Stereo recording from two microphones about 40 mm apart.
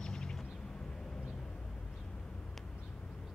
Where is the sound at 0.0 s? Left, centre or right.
Centre.